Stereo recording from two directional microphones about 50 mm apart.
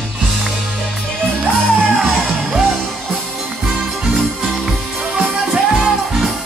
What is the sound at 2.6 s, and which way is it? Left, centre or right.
Music, centre.